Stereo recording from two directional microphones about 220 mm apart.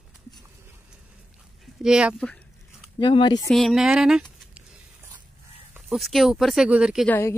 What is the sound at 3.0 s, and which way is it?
Speech, 20° left (ahead or behind).